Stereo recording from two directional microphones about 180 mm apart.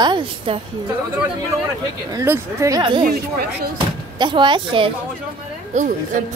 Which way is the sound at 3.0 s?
55° right (ahead or behind).